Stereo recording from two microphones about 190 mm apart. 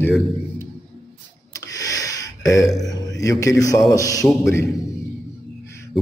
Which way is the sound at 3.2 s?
15° left (ahead or behind).